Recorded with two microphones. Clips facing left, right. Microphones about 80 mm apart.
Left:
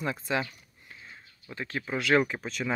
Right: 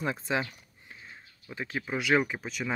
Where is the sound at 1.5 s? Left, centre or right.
Centre.